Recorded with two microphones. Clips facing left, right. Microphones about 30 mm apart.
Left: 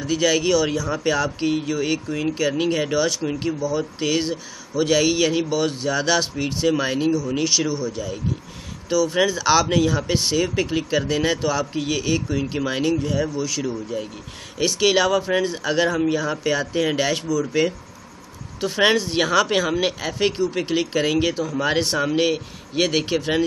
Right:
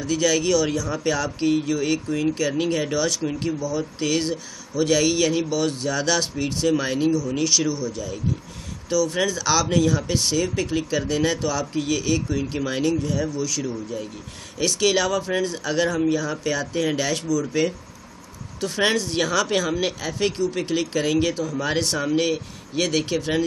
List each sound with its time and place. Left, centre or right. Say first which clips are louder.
0.0 s speech: left 1 dB; centre